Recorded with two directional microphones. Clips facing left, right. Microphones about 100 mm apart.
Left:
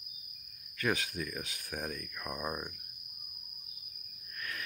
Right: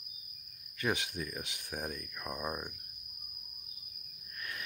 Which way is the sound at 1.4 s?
20° right (ahead or behind).